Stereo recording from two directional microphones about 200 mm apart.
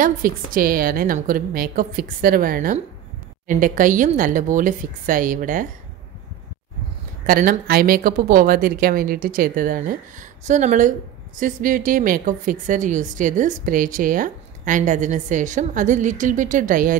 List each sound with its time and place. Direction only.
0.0 s a woman's voice: 45° right (ahead or behind)
7.2 s a woman's voice: 45° right (ahead or behind)